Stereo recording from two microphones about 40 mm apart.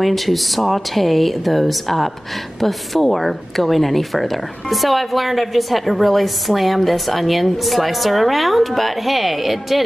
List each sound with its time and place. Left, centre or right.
0.0 s a woman's voice: centre